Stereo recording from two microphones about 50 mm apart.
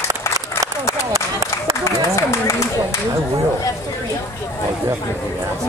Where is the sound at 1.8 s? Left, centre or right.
Left.